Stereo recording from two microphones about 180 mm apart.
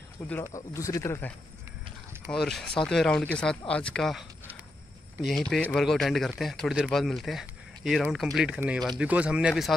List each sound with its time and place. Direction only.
0.3 s speech: 15° left (ahead or behind)
2.3 s speech: centre (ahead or behind)
5.2 s speech: centre (ahead or behind)